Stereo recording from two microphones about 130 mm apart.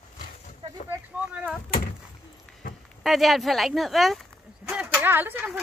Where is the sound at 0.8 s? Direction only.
15° right (ahead or behind).